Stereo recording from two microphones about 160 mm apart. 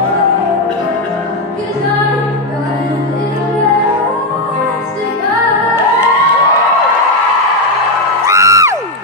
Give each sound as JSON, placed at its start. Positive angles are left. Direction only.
{"t": 8.3, "sound": "music", "side_deg": -20}